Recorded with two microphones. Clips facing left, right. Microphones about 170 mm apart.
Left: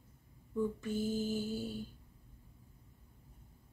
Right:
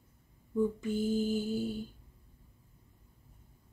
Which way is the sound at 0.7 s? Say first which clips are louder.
Right 4 dB; 15° right (ahead or behind).